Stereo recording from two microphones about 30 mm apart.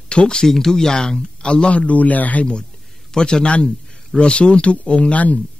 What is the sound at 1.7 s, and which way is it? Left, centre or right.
Speech, left.